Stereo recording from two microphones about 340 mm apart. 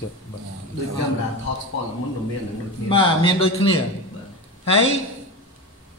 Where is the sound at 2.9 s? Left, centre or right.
Centre.